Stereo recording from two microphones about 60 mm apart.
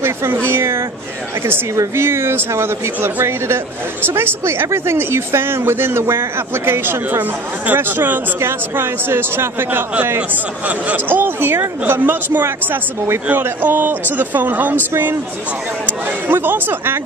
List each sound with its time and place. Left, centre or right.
0.0 s speech: right
2.0 s speech: right
10.9 s speech: right
16.3 s speech: right